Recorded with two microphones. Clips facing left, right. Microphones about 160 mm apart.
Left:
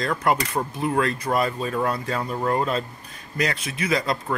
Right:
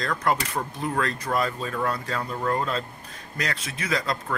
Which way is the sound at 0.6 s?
25° left (ahead or behind).